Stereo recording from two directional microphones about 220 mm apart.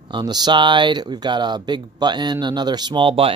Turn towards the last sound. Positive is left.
turn(degrees=-25)  # may be behind; listen again after turning